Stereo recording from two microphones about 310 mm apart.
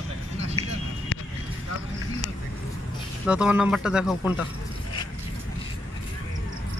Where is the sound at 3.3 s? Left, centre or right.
Centre.